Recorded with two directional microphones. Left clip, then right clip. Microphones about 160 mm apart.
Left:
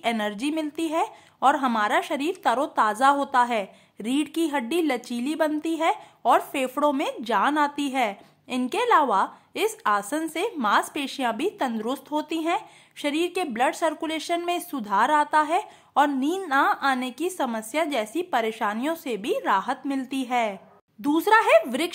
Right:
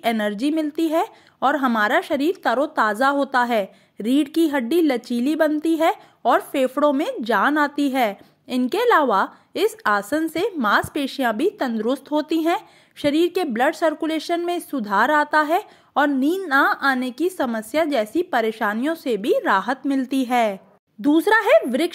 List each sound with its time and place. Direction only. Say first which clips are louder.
0.0 s a woman's voice: right 4 dB; 25° right (ahead or behind)
21.0 s a woman's voice: right 2 dB; 20° right (ahead or behind)